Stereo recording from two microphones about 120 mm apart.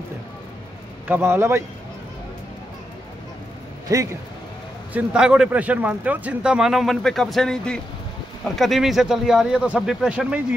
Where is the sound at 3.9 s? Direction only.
30° right (ahead or behind).